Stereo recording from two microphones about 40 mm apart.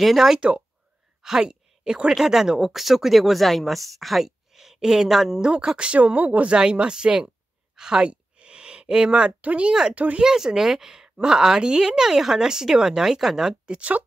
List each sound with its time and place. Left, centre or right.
0.0 s speech: centre
1.4 s speech: right
5.4 s speech: right
6.1 s speech: right
6.5 s a sound: right
9.4 s speech: right
9.7 s speech: right
9.9 s speech: right
10.2 s speech: centre
13.7 s speech: right